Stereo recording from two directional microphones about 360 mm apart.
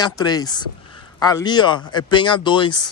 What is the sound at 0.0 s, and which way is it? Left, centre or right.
A man's voice, centre.